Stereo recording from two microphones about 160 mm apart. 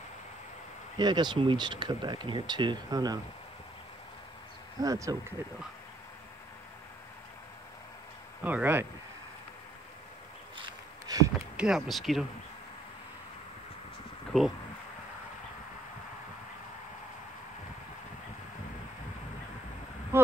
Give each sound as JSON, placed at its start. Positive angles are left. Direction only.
{"t": 0.9, "sound": "speech", "side_deg": -25}
{"t": 4.8, "sound": "speech", "side_deg": -20}
{"t": 8.5, "sound": "speech", "side_deg": -10}
{"t": 10.6, "sound": "a sound", "side_deg": -25}
{"t": 11.5, "sound": "speech", "side_deg": -5}
{"t": 14.3, "sound": "speech", "side_deg": 5}